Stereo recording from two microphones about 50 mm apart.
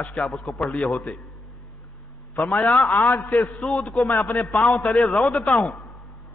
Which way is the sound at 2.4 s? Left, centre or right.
Centre.